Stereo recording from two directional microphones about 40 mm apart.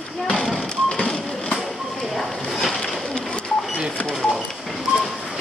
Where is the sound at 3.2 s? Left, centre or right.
Left.